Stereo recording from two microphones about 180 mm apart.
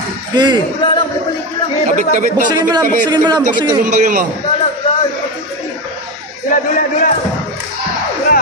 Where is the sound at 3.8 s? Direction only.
45° right (ahead or behind).